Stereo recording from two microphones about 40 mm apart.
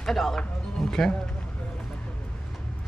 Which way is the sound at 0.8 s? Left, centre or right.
Centre.